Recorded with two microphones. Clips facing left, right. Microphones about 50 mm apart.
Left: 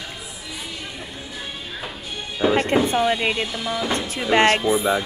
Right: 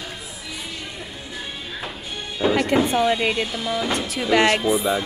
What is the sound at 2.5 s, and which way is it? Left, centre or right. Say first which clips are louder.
Speech: left 1 dB; left.